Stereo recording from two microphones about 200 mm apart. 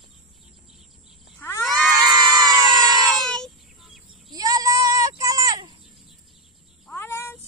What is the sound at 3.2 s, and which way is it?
Child singing, centre (ahead or behind).